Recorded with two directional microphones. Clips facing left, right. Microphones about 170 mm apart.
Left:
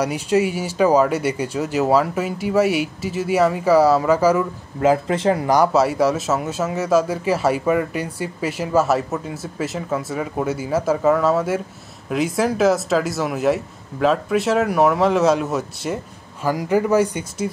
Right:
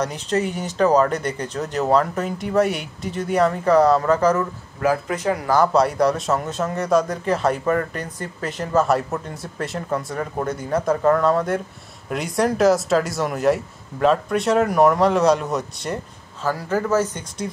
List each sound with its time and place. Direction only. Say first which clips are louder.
0.0 s speech: left 4 dB; 10° left (ahead or behind)
4.8 s speech: left 4 dB; 25° left (ahead or behind)
5.6 s a man's voice: left 1 dB; 5° left (ahead or behind)
16.4 s speech: left 3 dB; 15° left (ahead or behind)